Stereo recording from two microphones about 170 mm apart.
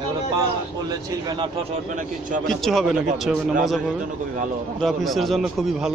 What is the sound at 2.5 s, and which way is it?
A man's voice, centre (ahead or behind).